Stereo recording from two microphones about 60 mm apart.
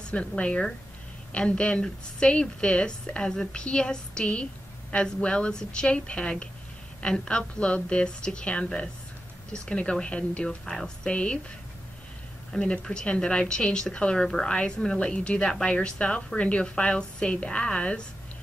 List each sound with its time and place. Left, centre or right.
0.1 s a woman's voice: centre
12.5 s a woman's voice: centre